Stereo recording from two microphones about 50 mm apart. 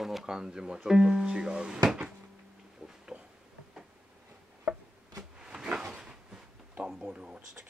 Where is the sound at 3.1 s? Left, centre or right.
Centre.